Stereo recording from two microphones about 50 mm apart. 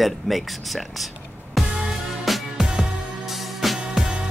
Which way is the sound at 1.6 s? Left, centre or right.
Centre.